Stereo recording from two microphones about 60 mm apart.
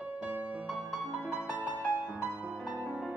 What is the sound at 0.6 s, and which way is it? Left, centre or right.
Music, centre.